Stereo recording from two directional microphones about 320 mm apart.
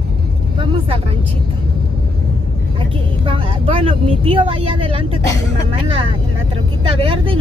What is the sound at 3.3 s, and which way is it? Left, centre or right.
Speech, centre.